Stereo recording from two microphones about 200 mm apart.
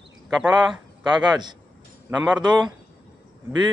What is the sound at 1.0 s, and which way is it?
Speech, 20° right (ahead or behind).